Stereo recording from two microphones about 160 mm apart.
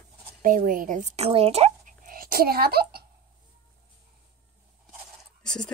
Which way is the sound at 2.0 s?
65° right (ahead or behind).